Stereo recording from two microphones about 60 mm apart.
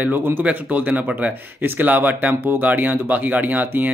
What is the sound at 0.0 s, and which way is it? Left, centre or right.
Speech, right.